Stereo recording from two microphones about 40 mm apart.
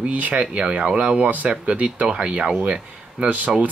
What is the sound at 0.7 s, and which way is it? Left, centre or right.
Speech, right.